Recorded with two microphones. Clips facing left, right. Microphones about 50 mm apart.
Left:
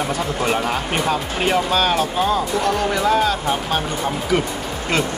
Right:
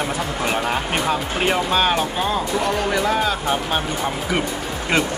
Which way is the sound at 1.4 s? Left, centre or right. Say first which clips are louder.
Left 1 dB; centre.